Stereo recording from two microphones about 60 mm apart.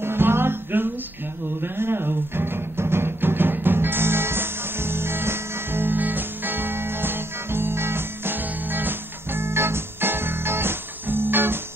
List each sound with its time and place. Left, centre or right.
0.0 s music: right